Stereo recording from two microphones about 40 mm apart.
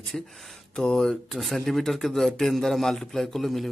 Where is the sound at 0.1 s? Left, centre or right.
Left.